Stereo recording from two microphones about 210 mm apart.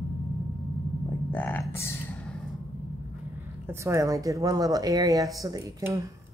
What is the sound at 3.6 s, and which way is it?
Speech, 15° right (ahead or behind).